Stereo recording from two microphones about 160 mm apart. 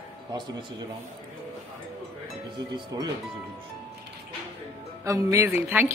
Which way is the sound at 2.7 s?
25° right (ahead or behind).